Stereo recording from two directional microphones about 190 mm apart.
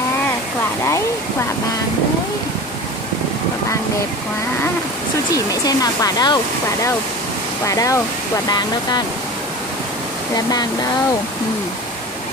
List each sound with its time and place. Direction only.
5.3 s speech: 20° left (ahead or behind)
10.3 s speech: 20° left (ahead or behind)